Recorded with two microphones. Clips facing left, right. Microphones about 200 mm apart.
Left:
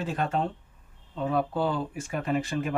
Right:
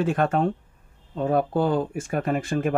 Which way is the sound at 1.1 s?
45° right (ahead or behind).